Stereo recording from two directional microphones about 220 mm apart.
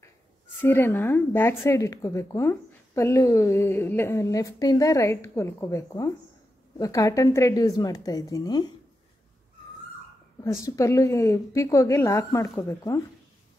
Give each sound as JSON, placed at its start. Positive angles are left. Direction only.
{"t": 0.6, "sound": "speech", "side_deg": 10}
{"t": 10.6, "sound": "speech", "side_deg": 15}